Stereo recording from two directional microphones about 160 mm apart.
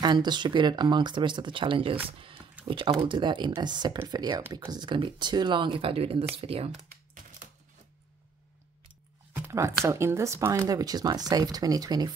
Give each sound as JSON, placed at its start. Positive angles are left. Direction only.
{"t": 0.0, "sound": "speech", "side_deg": -25}
{"t": 9.3, "sound": "a sound", "side_deg": -20}
{"t": 9.8, "sound": "speech", "side_deg": -15}